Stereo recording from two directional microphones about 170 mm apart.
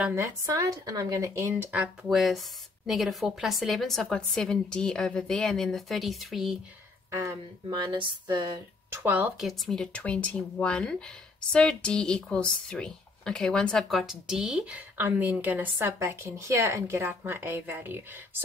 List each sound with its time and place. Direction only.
0.0 s a woman's voice: 15° right (ahead or behind)
7.1 s speech: 15° right (ahead or behind)
7.8 s a sound: 25° right (ahead or behind)
8.9 s speech: 10° right (ahead or behind)
9.5 s speech: 5° left (ahead or behind)